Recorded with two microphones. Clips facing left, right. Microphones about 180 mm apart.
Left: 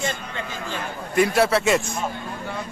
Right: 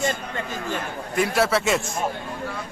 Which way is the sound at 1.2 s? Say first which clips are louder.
Left 3 dB; centre (ahead or behind).